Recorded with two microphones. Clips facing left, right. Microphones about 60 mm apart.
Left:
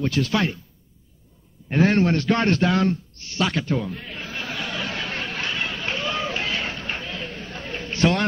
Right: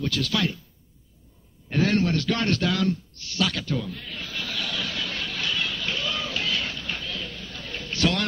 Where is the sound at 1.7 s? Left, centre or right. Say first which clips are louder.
Left 4 dB; left.